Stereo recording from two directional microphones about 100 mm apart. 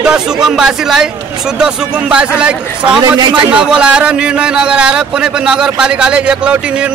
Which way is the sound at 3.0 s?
40° right (ahead or behind).